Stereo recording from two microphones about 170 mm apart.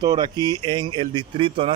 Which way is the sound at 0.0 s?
25° right (ahead or behind).